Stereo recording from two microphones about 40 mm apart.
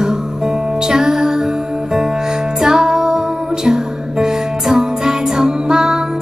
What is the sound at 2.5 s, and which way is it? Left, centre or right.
Music, centre.